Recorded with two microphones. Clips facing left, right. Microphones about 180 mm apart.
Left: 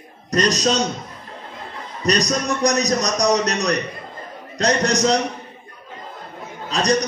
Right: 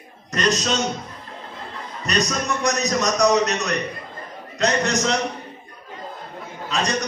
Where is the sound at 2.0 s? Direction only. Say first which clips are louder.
Left 4 dB; 35° left (ahead or behind).